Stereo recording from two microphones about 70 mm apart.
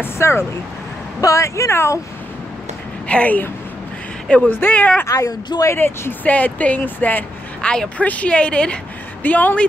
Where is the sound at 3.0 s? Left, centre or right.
Centre.